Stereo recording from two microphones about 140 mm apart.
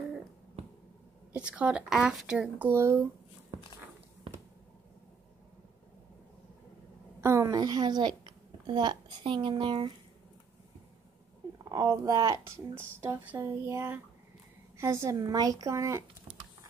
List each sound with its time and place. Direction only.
1.3 s a woman's voice: 10° right (ahead or behind)
2.7 s a woman's voice: 20° right (ahead or behind)
7.2 s a woman's voice: 20° right (ahead or behind); by 9.9 s 35° right (ahead or behind)
11.5 s a woman's voice: 25° right (ahead or behind)